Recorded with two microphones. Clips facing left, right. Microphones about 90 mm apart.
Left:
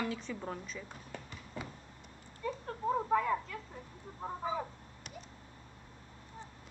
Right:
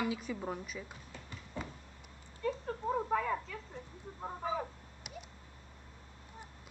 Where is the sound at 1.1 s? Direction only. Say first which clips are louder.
Left 7 dB; 55° left (ahead or behind).